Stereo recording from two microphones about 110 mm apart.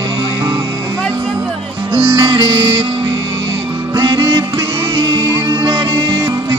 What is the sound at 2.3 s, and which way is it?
Music, 50° right (ahead or behind).